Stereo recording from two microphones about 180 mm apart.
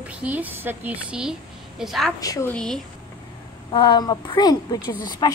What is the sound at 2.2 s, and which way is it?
Speech, 15° left (ahead or behind).